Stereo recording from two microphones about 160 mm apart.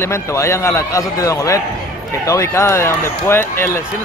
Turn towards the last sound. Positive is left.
turn(degrees=15)  # may be behind; listen again after turning